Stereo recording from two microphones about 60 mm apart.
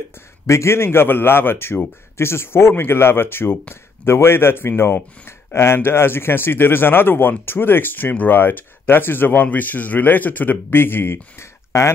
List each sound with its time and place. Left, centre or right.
0.5 s a man's voice: left